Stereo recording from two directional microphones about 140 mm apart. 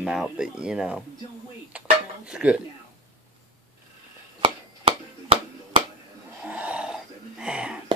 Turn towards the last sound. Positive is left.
turn(degrees=-5)  # may be behind; listen again after turning